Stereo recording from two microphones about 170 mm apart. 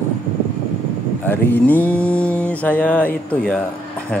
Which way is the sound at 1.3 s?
10° left (ahead or behind).